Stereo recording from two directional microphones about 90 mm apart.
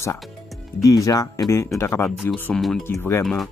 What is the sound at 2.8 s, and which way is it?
Speech, 25° left (ahead or behind).